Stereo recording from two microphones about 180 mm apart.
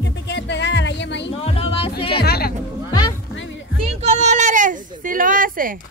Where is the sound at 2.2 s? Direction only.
60° left (ahead or behind).